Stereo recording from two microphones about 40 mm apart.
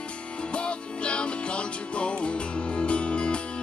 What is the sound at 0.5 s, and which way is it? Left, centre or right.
Music, left.